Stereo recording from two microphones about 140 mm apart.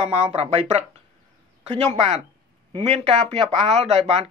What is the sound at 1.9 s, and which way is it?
Speech, 55° right (ahead or behind).